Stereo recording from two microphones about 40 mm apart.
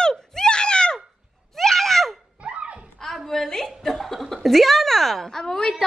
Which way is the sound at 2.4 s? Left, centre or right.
Right.